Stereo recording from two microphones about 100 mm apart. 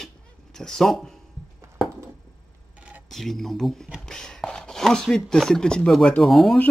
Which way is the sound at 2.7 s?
15° right (ahead or behind).